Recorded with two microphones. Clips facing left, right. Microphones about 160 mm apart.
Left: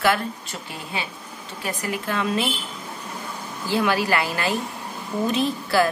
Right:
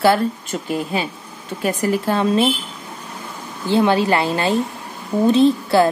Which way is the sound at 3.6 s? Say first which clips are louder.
Right 6 dB; 25° right (ahead or behind).